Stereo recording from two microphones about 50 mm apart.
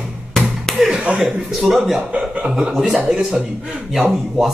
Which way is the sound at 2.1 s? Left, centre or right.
Centre.